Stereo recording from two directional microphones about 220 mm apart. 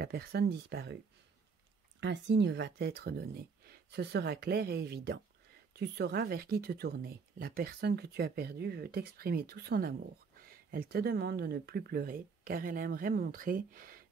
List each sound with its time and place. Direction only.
0.0 s speech: 45° right (ahead or behind)
2.0 s speech: 55° right (ahead or behind)